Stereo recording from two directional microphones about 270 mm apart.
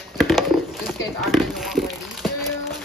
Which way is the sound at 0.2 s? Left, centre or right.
Centre.